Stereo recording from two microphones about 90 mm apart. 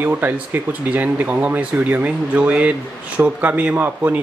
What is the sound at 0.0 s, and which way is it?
Speech, 20° right (ahead or behind).